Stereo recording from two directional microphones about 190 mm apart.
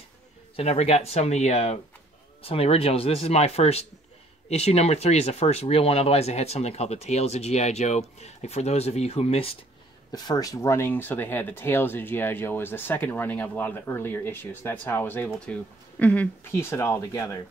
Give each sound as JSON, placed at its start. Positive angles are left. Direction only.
{"t": 0.6, "sound": "speech", "side_deg": 35}
{"t": 10.1, "sound": "speech", "side_deg": 20}